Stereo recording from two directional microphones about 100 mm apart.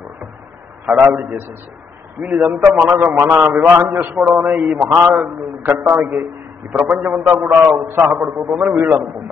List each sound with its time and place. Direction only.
0.8 s a man's voice: 15° right (ahead or behind)